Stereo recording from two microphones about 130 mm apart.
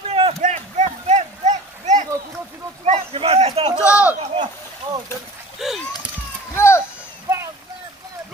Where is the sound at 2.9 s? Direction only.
50° right (ahead or behind).